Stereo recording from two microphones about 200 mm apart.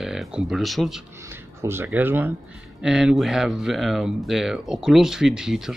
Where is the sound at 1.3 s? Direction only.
10° right (ahead or behind).